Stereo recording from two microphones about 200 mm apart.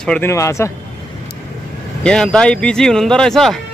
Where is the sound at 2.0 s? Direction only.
5° left (ahead or behind).